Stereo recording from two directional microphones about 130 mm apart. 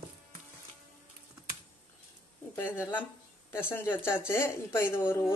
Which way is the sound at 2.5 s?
15° left (ahead or behind).